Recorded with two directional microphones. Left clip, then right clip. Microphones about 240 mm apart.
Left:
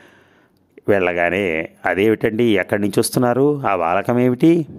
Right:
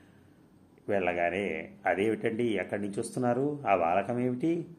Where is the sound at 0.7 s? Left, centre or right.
Left.